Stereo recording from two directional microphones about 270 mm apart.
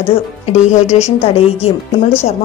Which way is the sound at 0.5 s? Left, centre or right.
Left.